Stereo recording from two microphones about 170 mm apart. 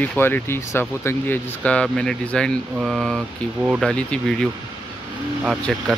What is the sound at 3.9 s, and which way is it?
Speech, 5° left (ahead or behind).